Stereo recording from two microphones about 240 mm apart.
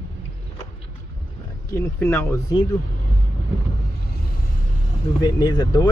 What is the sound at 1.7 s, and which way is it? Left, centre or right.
Speech, centre.